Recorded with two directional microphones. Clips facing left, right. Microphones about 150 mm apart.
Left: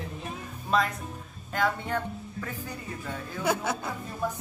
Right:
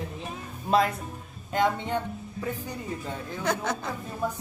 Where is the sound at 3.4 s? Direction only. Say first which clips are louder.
Left 1 dB; 5° left (ahead or behind).